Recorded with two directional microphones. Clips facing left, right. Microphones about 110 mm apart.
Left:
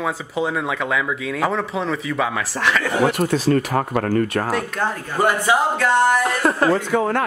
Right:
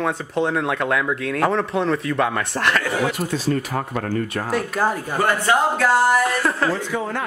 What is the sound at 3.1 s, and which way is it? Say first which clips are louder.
Speech: left 4 dB; 65° left (ahead or behind).